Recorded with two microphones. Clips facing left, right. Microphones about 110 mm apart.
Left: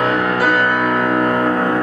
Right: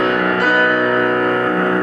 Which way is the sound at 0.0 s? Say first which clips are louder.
Even; 5° left (ahead or behind).